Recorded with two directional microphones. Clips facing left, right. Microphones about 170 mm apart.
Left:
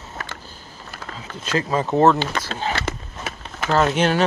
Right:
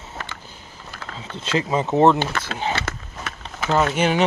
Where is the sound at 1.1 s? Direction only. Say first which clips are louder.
Even; 25° right (ahead or behind).